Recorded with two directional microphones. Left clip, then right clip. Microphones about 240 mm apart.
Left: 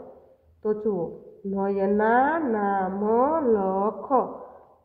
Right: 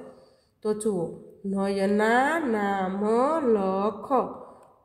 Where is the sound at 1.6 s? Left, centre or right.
Centre.